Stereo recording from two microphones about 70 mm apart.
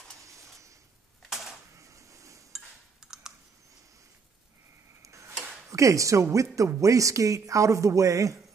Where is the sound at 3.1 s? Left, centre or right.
Centre.